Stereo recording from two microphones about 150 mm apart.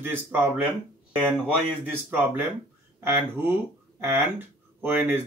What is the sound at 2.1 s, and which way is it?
Speech, 15° right (ahead or behind).